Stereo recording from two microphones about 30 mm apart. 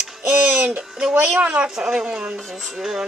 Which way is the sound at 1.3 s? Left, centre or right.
Right.